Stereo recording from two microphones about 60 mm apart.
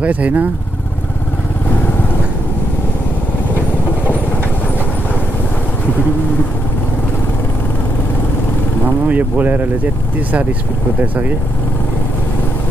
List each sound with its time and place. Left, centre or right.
0.0 s speech: right
9.1 s speech: right
11.0 s speech: right